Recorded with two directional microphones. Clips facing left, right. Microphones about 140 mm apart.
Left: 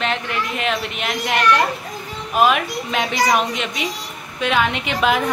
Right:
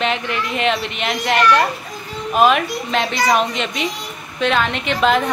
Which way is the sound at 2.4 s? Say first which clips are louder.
Right 2 dB; 5° left (ahead or behind).